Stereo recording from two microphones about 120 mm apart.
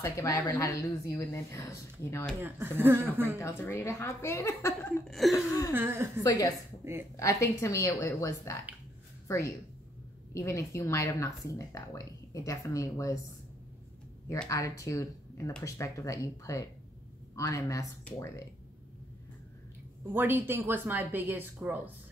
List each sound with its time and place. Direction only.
0.0 s speech: 25° left (ahead or behind)
2.4 s speech: 20° right (ahead or behind)
3.3 s speech: 25° left (ahead or behind)
5.0 s a sound: centre (ahead or behind)
5.7 s speech: 20° right (ahead or behind)
6.2 s speech: 30° left (ahead or behind)
6.8 s speech: 20° right (ahead or behind)
7.2 s speech: 25° left (ahead or behind)
10.3 s speech: 25° left (ahead or behind)
14.5 s speech: 25° left (ahead or behind)
20.2 s a woman's voice: 15° right (ahead or behind)